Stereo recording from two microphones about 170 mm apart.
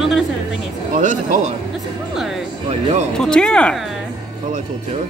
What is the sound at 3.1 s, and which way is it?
Speech, 5° left (ahead or behind).